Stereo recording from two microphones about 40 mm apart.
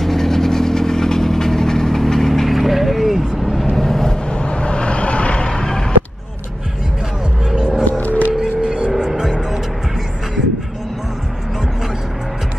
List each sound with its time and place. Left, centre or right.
0.0 s vehicle: centre
2.5 s vehicle: centre
3.7 s vehicle: centre
4.3 s vehicle: left
7.5 s music: centre
8.0 s wild animals: left
8.6 s vehicle: right